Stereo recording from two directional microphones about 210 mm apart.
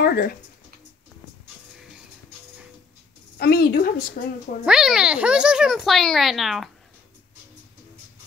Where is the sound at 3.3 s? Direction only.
45° left (ahead or behind).